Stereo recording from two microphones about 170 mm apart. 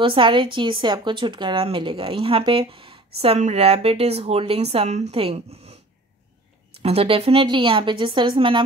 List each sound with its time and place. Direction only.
0.0 s speech: 30° right (ahead or behind)
6.8 s speech: 35° right (ahead or behind)